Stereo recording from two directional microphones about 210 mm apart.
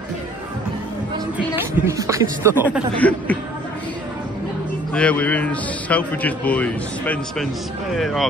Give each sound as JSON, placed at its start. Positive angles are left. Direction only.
{"t": 1.9, "sound": "speech", "side_deg": -15}
{"t": 3.0, "sound": "a man's voice", "side_deg": 5}
{"t": 4.9, "sound": "a man's voice", "side_deg": 5}